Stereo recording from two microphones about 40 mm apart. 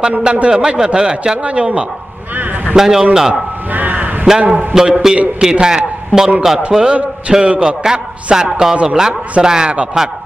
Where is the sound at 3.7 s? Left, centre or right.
Right.